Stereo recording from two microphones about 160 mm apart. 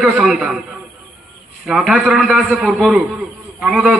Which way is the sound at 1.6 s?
Centre (ahead or behind).